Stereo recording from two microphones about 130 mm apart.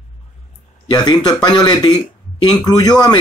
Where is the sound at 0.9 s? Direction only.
30° left (ahead or behind).